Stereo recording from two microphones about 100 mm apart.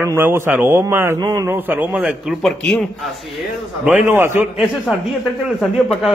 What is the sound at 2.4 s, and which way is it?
Speech, 5° left (ahead or behind).